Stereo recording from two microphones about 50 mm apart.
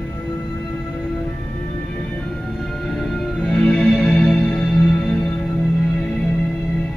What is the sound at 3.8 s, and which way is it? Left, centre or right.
Music, centre.